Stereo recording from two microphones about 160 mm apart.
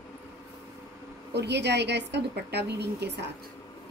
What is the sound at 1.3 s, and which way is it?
A woman's voice, 90° right.